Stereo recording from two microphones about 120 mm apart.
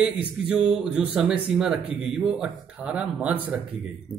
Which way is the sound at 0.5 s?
10° right (ahead or behind).